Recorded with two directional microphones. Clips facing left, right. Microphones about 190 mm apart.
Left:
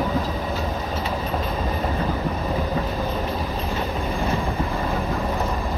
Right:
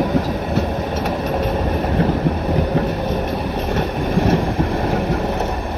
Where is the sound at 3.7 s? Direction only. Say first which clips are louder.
Right 9 dB; 75° right (ahead or behind).